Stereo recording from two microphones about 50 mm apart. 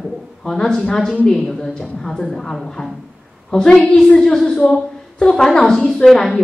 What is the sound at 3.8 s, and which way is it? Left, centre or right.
A woman's voice, centre.